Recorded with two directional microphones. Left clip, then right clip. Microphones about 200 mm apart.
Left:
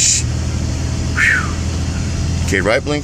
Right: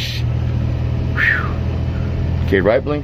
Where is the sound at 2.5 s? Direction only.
15° right (ahead or behind).